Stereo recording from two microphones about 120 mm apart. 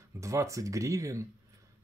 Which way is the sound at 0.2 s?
25° right (ahead or behind).